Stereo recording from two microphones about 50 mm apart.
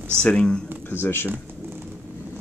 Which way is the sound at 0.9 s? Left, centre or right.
Left.